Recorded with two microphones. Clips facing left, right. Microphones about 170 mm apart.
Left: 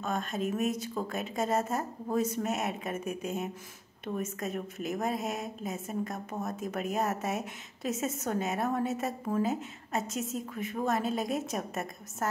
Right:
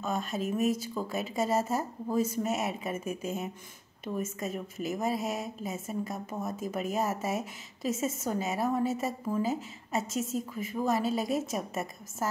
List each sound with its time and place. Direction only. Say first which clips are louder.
0.0 s a woman's voice: even; 5° right (ahead or behind)